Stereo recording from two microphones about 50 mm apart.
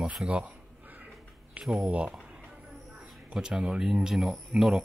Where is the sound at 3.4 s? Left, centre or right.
Centre.